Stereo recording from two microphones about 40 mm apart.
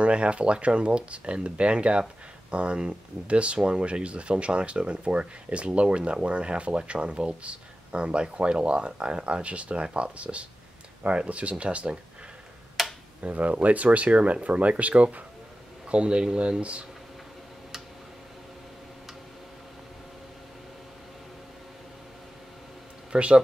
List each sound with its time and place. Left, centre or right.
0.0 s speech: right
12.8 s tick-tock: centre
13.2 s speech: right
23.1 s speech: right